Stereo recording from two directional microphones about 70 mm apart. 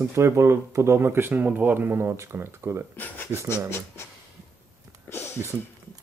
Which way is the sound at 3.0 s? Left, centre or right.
Left.